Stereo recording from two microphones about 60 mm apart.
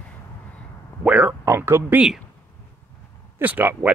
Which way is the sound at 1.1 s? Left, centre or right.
Centre.